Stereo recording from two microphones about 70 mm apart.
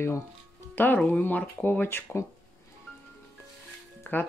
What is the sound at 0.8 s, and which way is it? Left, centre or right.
Speech, left.